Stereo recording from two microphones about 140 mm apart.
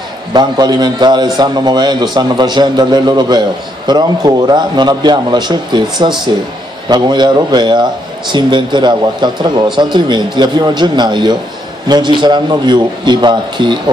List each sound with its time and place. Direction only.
0.3 s a man's voice: 30° right (ahead or behind)